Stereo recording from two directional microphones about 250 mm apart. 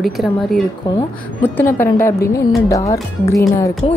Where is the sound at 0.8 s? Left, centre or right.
Centre.